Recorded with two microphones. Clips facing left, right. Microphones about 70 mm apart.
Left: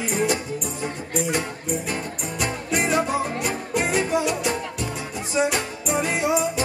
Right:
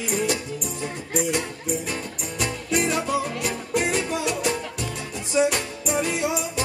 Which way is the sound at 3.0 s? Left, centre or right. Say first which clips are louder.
Left 1 dB; left.